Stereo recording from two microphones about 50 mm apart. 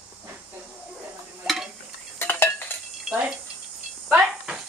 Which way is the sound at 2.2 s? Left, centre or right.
Left.